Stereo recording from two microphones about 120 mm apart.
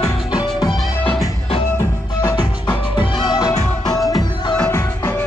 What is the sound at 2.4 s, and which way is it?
Music, 40° left (ahead or behind).